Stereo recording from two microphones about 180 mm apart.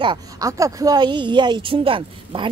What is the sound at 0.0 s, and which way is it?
A woman's voice, 25° right (ahead or behind).